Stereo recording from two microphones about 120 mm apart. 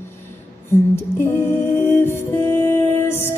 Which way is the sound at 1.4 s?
20° left (ahead or behind).